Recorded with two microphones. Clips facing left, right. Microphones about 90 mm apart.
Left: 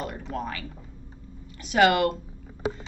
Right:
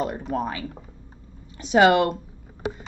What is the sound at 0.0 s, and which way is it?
Speech, 20° right (ahead or behind).